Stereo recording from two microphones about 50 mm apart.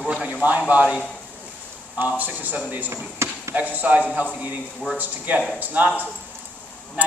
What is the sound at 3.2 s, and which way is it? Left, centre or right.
Basketball bounce, right.